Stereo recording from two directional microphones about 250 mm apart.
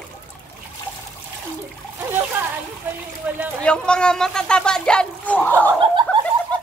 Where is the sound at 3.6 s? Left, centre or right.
Centre.